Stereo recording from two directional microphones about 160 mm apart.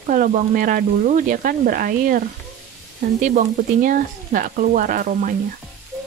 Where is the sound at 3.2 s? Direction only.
55° right (ahead or behind).